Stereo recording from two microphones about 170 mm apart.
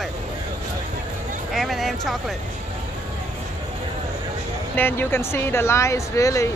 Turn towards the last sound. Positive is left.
turn(degrees=20)  # may be behind; listen again after turning